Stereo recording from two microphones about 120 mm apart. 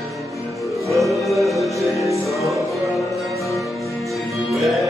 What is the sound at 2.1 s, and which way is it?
Music, 25° left (ahead or behind).